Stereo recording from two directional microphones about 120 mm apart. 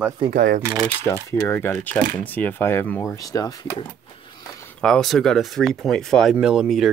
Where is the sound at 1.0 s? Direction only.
20° left (ahead or behind).